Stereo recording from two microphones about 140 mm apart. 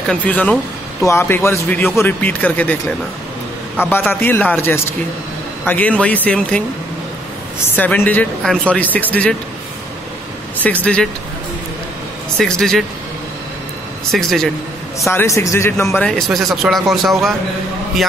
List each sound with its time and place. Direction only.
0.1 s speech: 10° left (ahead or behind)
3.8 s speech: 15° left (ahead or behind)
7.7 s speech: 15° left (ahead or behind)
10.6 s speech: 10° left (ahead or behind)
12.4 s speech: 5° left (ahead or behind)
14.1 s speech: centre (ahead or behind)
15.0 s speech: 20° left (ahead or behind)
16.0 s speech: 5° left (ahead or behind)